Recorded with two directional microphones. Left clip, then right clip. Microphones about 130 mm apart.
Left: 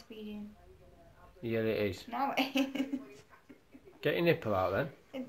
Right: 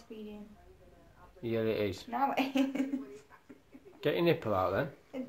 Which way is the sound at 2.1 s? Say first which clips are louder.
Right 2 dB; 25° right (ahead or behind).